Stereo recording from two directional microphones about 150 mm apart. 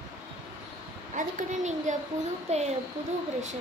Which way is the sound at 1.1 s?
55° right (ahead or behind).